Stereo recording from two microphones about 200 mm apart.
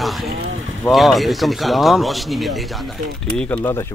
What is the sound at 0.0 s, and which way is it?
Vehicle, centre (ahead or behind).